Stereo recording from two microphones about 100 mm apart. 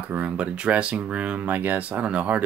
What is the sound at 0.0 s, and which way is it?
Speech, 15° right (ahead or behind).